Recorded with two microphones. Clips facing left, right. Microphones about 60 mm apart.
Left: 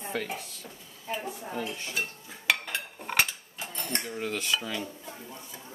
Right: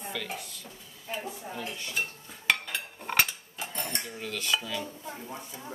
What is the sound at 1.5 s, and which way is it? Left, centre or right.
Speech, left.